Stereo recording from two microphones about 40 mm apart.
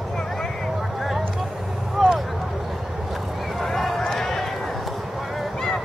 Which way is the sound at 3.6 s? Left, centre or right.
Centre.